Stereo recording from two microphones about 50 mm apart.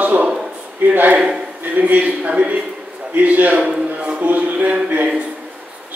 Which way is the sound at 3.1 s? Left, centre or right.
Right.